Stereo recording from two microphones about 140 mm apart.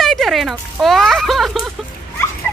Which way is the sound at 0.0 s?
Centre (ahead or behind).